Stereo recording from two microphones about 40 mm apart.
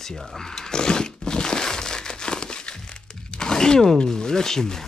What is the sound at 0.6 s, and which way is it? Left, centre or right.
Crumpling, centre.